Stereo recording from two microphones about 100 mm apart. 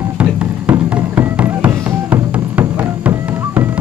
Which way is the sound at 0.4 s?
15° right (ahead or behind).